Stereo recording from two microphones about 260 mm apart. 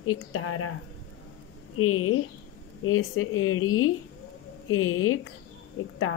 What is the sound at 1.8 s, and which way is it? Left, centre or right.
A woman's voice, left.